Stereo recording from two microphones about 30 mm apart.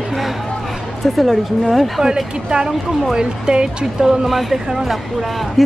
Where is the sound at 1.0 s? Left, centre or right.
Centre.